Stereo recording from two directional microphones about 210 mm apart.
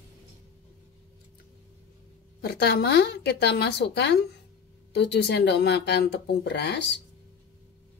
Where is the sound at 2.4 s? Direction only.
50° left (ahead or behind).